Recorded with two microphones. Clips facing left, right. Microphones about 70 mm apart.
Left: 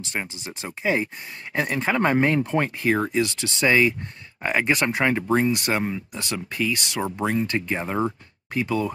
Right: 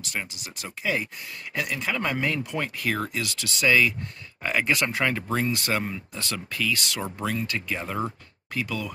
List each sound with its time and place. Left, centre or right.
0.0 s speech: left